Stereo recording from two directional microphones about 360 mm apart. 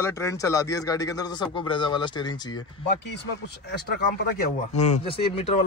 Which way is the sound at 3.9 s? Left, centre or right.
Left.